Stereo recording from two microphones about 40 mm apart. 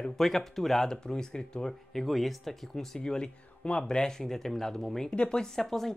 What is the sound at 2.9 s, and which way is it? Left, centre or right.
Speech, left.